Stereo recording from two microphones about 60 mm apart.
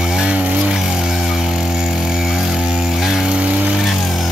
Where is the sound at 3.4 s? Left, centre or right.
Centre.